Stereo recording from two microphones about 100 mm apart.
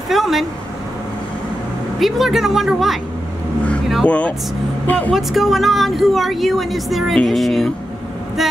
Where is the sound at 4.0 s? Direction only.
15° left (ahead or behind).